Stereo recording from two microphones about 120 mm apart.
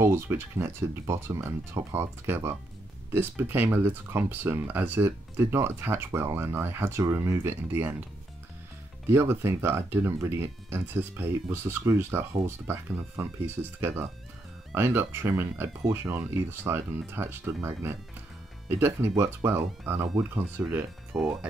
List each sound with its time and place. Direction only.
0.0 s speech: 20° right (ahead or behind)
9.1 s speech: 20° right (ahead or behind)
21.1 s speech: 5° right (ahead or behind)